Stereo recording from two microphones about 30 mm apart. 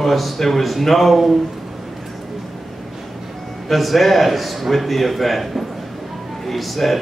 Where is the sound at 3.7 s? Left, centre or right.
Centre.